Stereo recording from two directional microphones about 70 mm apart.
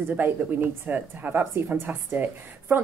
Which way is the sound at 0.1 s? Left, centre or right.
Right.